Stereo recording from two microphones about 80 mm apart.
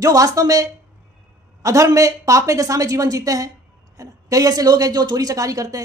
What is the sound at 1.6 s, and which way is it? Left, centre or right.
A woman's voice, right.